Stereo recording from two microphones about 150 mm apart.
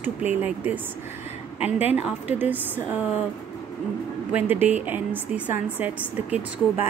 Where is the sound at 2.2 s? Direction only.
10° right (ahead or behind).